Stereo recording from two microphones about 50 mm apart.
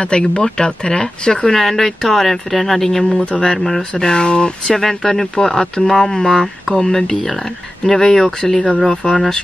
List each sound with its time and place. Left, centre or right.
0.0 s speech: centre
3.3 s speech: centre